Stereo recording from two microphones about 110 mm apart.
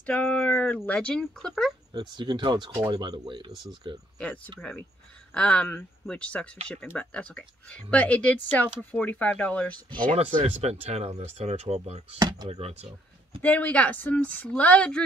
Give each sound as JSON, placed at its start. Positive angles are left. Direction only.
{"t": 0.0, "sound": "a sound", "side_deg": 15}
{"t": 0.8, "sound": "speech", "side_deg": 10}
{"t": 2.0, "sound": "speech", "side_deg": -40}
{"t": 5.3, "sound": "speech", "side_deg": 10}
{"t": 10.1, "sound": "speech", "side_deg": -75}
{"t": 12.2, "sound": "speech", "side_deg": -40}
{"t": 12.4, "sound": "speech", "side_deg": -70}
{"t": 13.4, "sound": "speech", "side_deg": 15}